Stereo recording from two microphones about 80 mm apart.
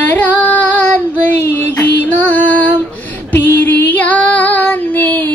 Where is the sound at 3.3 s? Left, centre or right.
Left.